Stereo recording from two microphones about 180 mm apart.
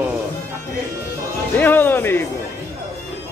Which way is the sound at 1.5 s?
10° left (ahead or behind).